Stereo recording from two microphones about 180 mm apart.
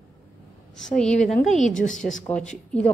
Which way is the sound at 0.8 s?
5° left (ahead or behind).